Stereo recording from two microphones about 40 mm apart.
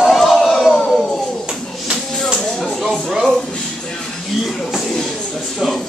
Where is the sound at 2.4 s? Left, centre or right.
Centre.